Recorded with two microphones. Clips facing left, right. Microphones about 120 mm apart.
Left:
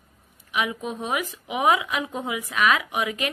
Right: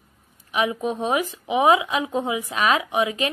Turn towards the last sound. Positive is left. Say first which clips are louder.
# right 4 dB
turn(degrees=-30)  # may be behind; listen again after turning